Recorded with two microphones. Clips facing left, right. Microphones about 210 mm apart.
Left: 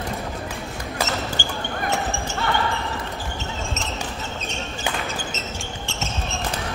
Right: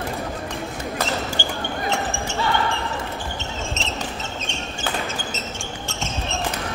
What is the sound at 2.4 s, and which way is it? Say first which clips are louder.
Basketball bounce: right 2 dB; 60° left (ahead or behind).